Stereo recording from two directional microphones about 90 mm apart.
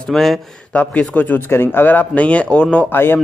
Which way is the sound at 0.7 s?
15° left (ahead or behind).